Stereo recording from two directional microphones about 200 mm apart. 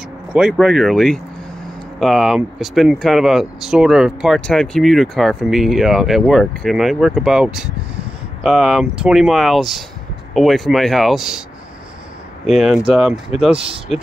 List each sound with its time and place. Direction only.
0.3 s speech: 5° right (ahead or behind)
12.4 s speech: centre (ahead or behind)
13.9 s speech: 35° left (ahead or behind)